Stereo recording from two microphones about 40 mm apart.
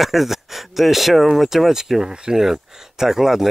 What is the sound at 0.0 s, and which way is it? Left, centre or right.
Speech, centre.